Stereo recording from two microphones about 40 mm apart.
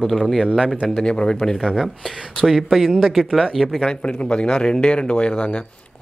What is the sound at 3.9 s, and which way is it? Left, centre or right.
Speech, left.